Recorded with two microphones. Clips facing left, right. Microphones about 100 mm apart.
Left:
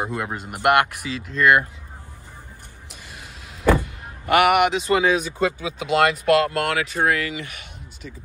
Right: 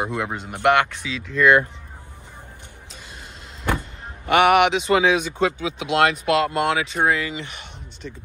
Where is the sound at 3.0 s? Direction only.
55° left (ahead or behind).